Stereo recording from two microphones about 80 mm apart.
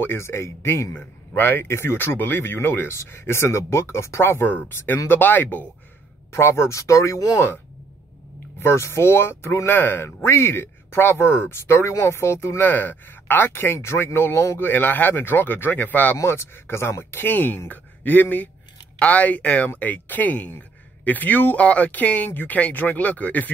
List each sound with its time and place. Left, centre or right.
0.0 s speech: left
0.9 s speech: left
8.5 s speech: left; by 23.5 s centre